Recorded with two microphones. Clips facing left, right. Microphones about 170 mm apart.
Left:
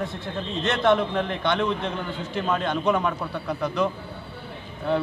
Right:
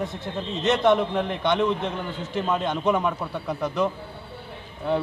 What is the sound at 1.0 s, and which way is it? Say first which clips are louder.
Speech: right 1 dB; 5° right (ahead or behind).